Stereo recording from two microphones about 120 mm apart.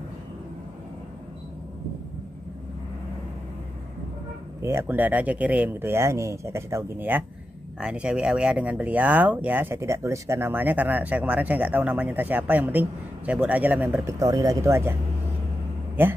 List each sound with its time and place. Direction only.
4.6 s speech: 20° right (ahead or behind)
14.2 s speech: 30° right (ahead or behind)
16.0 s speech: 15° right (ahead or behind)